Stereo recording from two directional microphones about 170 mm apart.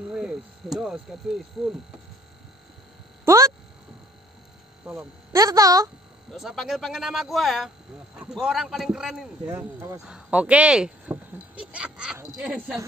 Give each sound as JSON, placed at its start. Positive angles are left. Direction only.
{"t": 0.1, "sound": "speech", "side_deg": -5}
{"t": 3.3, "sound": "a sound", "side_deg": -15}
{"t": 4.8, "sound": "speech", "side_deg": -15}
{"t": 6.3, "sound": "speech", "side_deg": 0}
{"t": 9.5, "sound": "speech", "side_deg": -15}